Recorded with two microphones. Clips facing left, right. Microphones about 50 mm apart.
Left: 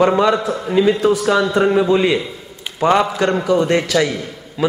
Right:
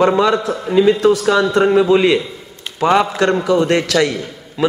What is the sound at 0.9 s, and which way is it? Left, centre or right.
Speech, centre.